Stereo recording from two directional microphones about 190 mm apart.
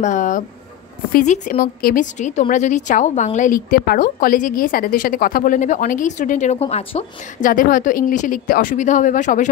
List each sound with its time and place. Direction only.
0.0 s a woman's voice: 40° left (ahead or behind)